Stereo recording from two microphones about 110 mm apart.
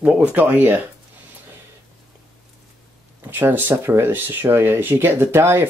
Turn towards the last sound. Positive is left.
turn(degrees=-20)  # may be behind; listen again after turning